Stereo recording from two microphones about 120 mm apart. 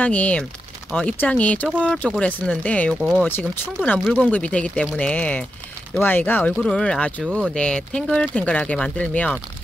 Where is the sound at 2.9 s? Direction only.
5° right (ahead or behind).